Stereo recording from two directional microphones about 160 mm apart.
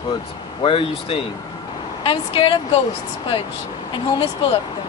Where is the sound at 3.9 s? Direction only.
30° left (ahead or behind).